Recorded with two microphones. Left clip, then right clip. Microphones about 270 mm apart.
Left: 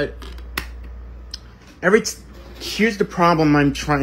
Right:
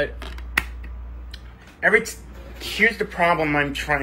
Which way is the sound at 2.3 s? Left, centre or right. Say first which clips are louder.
Left 1 dB; centre.